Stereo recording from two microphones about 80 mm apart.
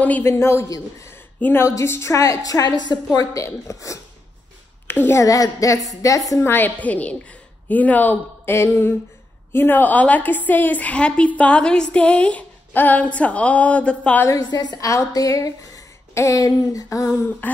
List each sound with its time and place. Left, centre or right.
0.2 s a woman's voice: left
1.4 s a woman's voice: left
3.4 s a woman's voice: left
4.8 s speech: left
5.2 s a woman's voice: left
6.4 s a woman's voice: left
8.5 s a woman's voice: left; by 14.2 s centre
14.5 s a woman's voice: left
14.8 s a woman's voice: left